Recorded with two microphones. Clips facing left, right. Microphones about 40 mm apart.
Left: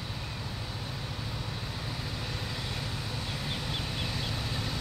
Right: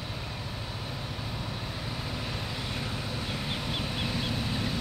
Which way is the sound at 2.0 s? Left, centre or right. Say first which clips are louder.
Right 2 dB; centre.